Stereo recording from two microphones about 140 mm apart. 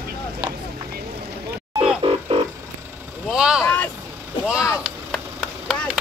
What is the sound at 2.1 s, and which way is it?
Music, 45° right (ahead or behind).